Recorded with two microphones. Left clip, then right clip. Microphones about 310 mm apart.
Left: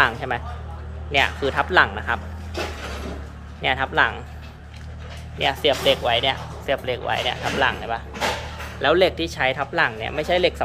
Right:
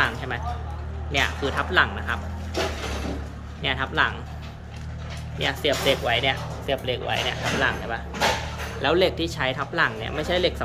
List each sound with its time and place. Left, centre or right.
0.0 s speech: centre
3.6 s speech: centre
5.4 s speech: centre